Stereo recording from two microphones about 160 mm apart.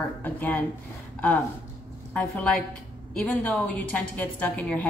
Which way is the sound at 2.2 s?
5° left (ahead or behind).